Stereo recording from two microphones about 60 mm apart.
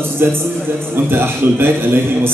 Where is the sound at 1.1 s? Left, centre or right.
Right.